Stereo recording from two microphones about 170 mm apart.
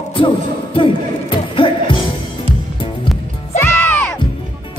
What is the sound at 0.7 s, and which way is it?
Music, 30° left (ahead or behind).